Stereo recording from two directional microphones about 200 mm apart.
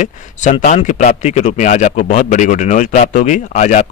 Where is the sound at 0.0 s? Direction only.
40° left (ahead or behind).